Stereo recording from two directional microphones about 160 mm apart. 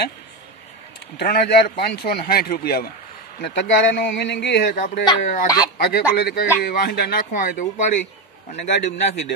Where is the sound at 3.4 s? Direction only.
90° left.